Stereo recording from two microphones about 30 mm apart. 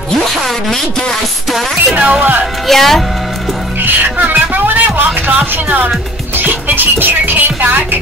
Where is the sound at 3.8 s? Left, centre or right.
Right.